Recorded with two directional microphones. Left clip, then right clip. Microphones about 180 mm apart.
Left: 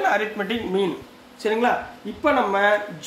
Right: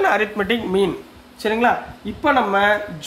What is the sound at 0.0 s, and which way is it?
Speech, 40° right (ahead or behind).